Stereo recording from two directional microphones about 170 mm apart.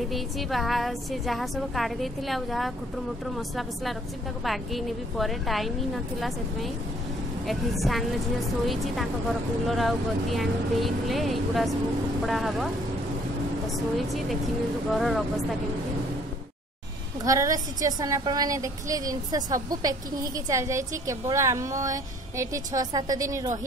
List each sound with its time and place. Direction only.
0.1 s a woman's voice: centre (ahead or behind)
7.4 s a woman's voice: centre (ahead or behind)
9.7 s a woman's voice: centre (ahead or behind)
14.9 s a woman's voice: centre (ahead or behind)
17.2 s a woman's voice: 20° right (ahead or behind)